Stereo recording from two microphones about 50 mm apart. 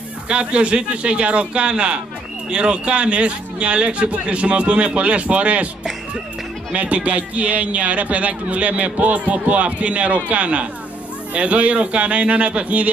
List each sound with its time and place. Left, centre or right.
0.3 s speech: right
6.7 s speech: right